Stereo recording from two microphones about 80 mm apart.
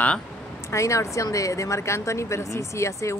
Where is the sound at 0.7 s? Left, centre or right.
Left.